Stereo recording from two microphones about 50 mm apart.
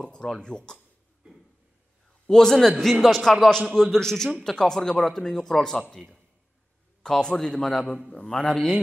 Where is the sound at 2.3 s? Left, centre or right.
Centre.